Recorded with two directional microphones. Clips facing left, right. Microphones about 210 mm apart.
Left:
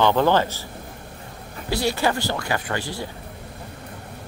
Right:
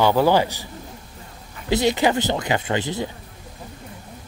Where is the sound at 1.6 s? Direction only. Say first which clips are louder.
Right 4 dB; 20° right (ahead or behind).